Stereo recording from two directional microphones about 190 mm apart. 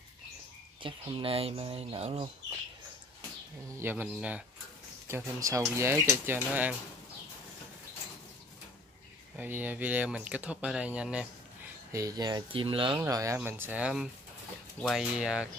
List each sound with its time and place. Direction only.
0.8 s speech: 25° right (ahead or behind)
3.8 s speech: 5° right (ahead or behind)
9.4 s speech: 10° right (ahead or behind)
11.9 s speech: 20° right (ahead or behind)
12.9 s speech: 15° right (ahead or behind)